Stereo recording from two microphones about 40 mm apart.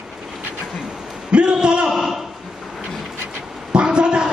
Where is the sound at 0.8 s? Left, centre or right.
Right.